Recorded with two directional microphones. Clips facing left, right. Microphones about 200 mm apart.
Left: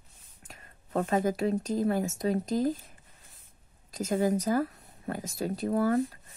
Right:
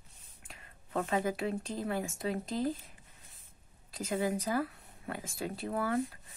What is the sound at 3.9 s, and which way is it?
Speech, 45° left (ahead or behind).